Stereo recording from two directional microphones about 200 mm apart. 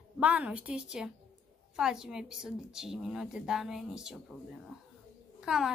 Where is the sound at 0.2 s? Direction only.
5° right (ahead or behind).